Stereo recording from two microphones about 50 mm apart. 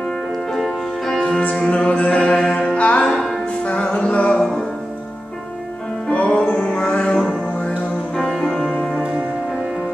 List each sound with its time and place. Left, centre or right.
0.5 s music: centre
1.7 s music: left
3.1 s music: centre
3.6 s music: left
6.0 s music: left